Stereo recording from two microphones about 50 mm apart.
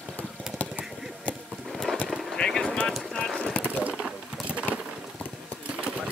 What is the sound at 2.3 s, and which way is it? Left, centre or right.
Vehicle, centre.